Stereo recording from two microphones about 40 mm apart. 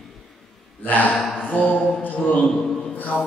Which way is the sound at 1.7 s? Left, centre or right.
Centre.